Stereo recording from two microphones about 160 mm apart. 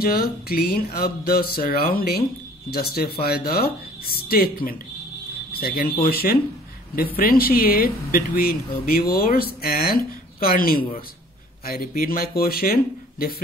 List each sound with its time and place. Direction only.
0.0 s speech: 70° left (ahead or behind)